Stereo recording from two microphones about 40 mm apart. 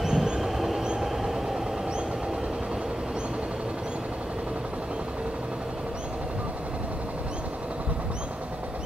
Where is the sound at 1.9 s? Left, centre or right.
Right.